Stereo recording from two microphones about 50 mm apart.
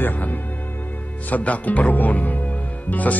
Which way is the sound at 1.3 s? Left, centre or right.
Left.